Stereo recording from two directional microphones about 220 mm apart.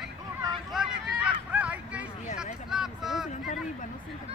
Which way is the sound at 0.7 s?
5° right (ahead or behind).